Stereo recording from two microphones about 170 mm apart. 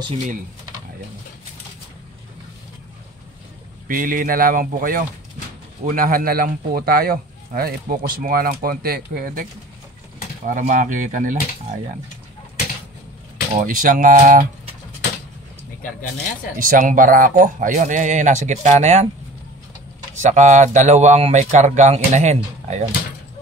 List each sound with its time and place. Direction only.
3.8 s a man's voice: 55° right (ahead or behind)
13.6 s speech: 55° right (ahead or behind)
16.5 s speech: 55° right (ahead or behind)
20.2 s speech: 45° right (ahead or behind)